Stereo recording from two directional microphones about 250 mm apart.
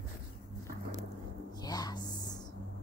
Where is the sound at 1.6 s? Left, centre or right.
Centre.